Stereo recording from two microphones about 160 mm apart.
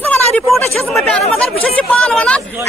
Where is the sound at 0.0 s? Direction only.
10° left (ahead or behind).